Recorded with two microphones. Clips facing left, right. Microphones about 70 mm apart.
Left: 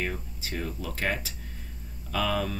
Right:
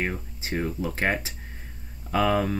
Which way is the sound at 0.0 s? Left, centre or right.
Right.